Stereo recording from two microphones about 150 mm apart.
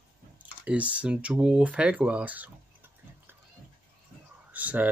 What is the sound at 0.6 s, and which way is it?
Speech, 10° right (ahead or behind).